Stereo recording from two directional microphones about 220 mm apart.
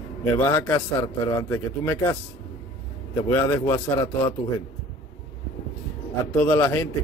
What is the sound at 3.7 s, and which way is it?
Speech, 20° left (ahead or behind).